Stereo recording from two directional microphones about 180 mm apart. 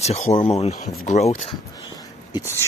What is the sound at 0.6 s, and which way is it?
Speech, 40° left (ahead or behind).